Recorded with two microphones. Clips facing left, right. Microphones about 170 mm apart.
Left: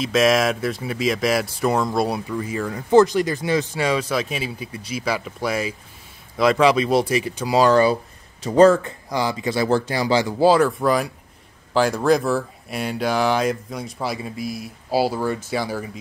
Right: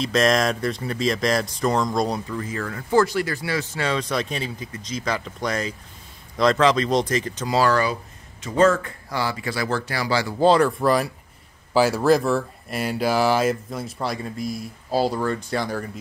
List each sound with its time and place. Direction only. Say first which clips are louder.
0.0 s speech: left 2 dB; 5° left (ahead or behind); by 8.7 s 35° left (ahead or behind)
8.8 s speech: left 3 dB; 20° left (ahead or behind)
10.4 s speech: even; centre (ahead or behind)